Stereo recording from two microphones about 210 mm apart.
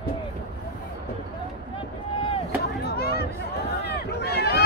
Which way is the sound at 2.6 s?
50° left (ahead or behind).